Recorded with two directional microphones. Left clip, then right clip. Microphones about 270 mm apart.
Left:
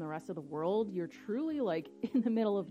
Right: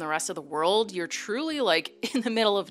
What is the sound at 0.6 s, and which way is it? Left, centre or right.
Speech, centre.